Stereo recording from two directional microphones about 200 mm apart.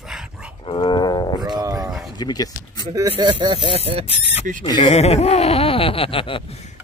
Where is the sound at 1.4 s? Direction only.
20° right (ahead or behind).